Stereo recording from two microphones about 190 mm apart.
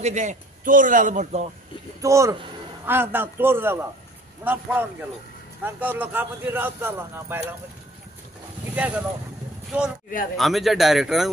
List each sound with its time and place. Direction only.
0.0 s a man's voice: 40° right (ahead or behind)
2.0 s speech: 15° right (ahead or behind)
8.7 s speech: 5° right (ahead or behind)